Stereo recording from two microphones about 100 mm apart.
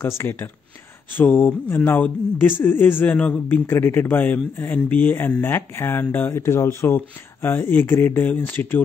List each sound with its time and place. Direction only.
0.0 s a man's voice: 20° left (ahead or behind)